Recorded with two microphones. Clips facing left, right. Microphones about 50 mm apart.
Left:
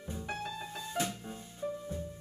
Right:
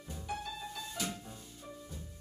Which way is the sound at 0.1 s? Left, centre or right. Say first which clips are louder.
Left 2 dB; left.